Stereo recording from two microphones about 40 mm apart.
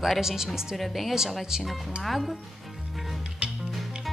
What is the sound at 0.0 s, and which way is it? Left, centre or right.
A woman's voice, centre.